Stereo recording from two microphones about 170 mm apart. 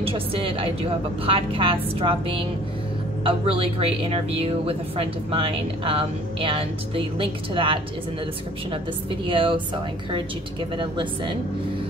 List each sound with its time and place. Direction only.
0.0 s a woman's voice: 35° right (ahead or behind)
9.2 s a woman's voice: 30° right (ahead or behind)
10.8 s a woman's voice: 30° right (ahead or behind)